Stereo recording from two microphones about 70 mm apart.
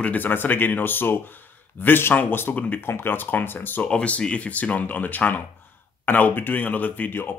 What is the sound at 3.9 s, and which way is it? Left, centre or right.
Speech, centre.